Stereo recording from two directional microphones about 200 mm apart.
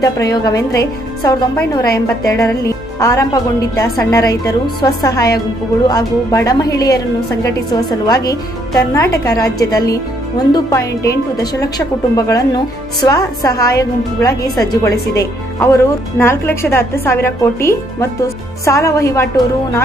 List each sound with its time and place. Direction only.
0.0 s a woman's voice: 20° left (ahead or behind)